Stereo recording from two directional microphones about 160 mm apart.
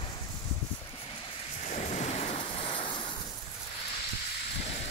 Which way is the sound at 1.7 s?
45° left (ahead or behind).